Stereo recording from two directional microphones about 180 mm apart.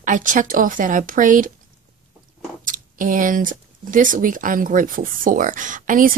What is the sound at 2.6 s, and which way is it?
Speech, 45° right (ahead or behind).